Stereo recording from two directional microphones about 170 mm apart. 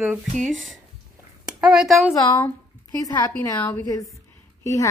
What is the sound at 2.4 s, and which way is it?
Speech, 20° left (ahead or behind).